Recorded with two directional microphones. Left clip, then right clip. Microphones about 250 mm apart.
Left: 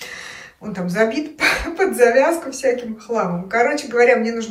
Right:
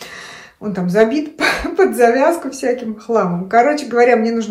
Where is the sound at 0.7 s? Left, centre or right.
Centre.